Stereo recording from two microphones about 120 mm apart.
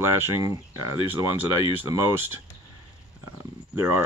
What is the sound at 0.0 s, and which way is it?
Speech, 20° right (ahead or behind).